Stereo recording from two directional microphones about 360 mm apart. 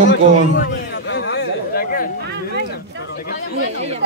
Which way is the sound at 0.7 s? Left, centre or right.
Left.